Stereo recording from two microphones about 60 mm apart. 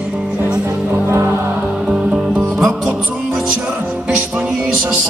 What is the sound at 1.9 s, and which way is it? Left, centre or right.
Music, centre.